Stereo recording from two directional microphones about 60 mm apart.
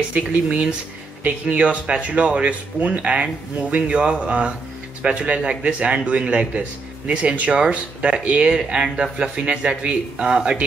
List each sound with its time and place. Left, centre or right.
0.1 s speech: right